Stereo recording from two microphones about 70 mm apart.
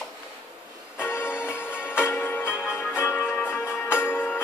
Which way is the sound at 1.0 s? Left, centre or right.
Left.